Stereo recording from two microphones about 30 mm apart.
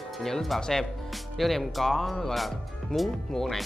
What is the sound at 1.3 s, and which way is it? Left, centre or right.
Speech, centre.